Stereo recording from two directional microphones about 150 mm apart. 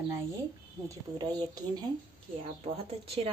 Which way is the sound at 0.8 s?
25° right (ahead or behind).